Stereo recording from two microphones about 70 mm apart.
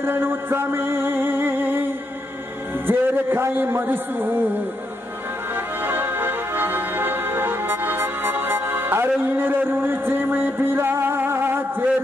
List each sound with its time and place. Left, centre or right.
0.0 s music: right
2.9 s a man's voice: right
5.9 s music: right